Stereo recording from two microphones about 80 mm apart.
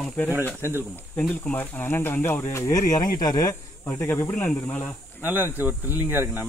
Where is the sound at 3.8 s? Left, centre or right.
Left.